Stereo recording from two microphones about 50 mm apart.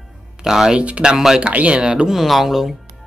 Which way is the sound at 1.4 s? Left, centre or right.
Right.